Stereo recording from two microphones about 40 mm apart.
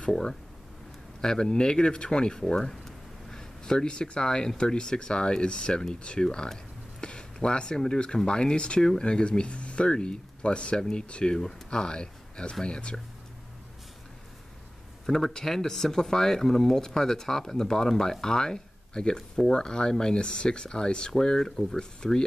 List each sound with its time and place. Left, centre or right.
0.1 s speech: centre
15.0 s speech: centre